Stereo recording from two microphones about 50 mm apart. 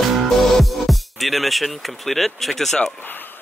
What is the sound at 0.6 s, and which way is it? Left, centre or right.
Speech, centre.